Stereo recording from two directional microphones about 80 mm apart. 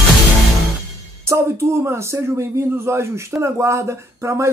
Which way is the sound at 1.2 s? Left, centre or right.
Right.